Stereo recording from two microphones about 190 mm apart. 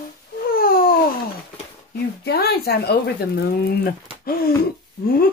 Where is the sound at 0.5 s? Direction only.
50° left (ahead or behind).